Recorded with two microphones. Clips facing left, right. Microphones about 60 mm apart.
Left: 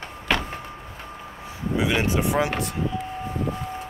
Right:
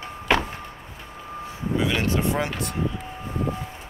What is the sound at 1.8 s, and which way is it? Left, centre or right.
Speech, centre.